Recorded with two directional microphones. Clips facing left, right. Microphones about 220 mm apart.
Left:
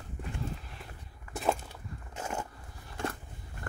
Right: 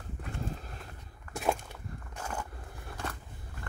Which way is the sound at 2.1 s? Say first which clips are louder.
Left 3 dB; 25° left (ahead or behind).